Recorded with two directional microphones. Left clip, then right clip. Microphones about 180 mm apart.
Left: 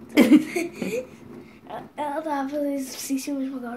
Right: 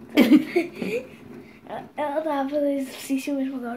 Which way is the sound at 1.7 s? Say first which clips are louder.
Right 2 dB; 35° right (ahead or behind).